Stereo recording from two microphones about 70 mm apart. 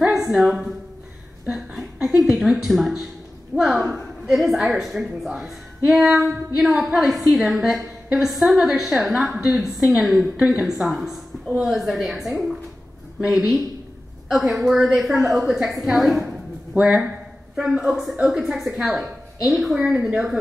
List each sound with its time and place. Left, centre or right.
0.0 s a woman's voice: centre
1.4 s a sound: centre
2.0 s a woman's voice: centre